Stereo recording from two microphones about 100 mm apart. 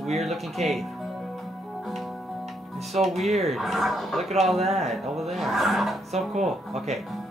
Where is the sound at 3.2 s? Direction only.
Centre (ahead or behind).